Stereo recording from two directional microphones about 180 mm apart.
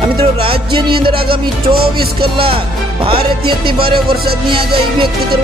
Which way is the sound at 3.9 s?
60° right (ahead or behind).